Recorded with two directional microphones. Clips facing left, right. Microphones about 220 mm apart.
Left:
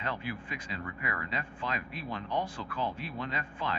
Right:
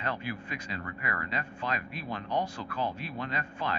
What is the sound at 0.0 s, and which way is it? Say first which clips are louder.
Speech: right 2 dB; 40° right (ahead or behind).